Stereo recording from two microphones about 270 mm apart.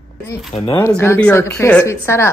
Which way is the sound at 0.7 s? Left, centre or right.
Centre.